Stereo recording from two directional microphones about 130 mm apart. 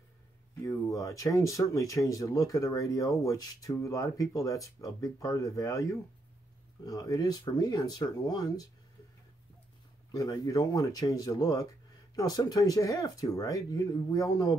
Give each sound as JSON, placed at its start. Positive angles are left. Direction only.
{"t": 0.7, "sound": "speech", "side_deg": 25}
{"t": 10.1, "sound": "speech", "side_deg": 30}